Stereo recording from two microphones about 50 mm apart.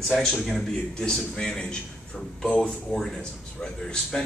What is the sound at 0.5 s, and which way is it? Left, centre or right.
A man's voice, centre.